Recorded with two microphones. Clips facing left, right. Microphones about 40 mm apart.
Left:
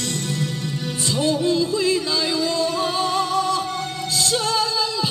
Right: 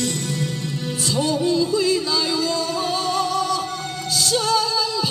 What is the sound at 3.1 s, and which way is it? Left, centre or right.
Music, left.